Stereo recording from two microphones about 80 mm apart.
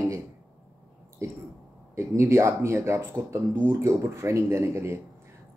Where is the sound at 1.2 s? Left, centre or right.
Right.